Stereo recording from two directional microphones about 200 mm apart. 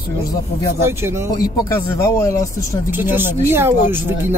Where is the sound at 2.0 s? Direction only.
15° left (ahead or behind).